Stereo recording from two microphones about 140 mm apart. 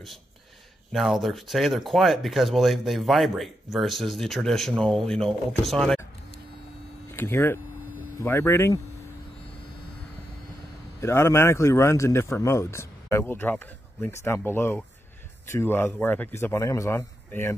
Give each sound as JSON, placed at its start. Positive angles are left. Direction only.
{"t": 0.9, "sound": "speech", "side_deg": 0}
{"t": 7.1, "sound": "a man's voice", "side_deg": 15}
{"t": 11.0, "sound": "a man's voice", "side_deg": 20}